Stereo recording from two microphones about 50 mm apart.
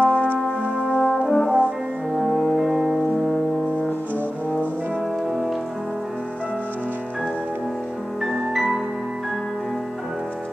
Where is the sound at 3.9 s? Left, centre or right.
Left.